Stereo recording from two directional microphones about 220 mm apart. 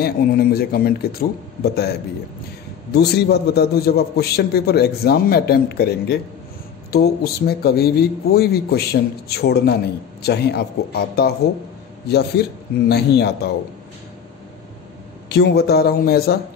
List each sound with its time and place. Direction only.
0.0 s a man's voice: 45° left (ahead or behind)
15.2 s a man's voice: 50° left (ahead or behind)